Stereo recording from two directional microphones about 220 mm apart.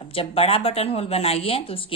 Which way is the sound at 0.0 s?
25° left (ahead or behind).